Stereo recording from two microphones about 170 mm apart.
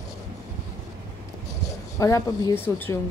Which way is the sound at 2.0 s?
20° left (ahead or behind).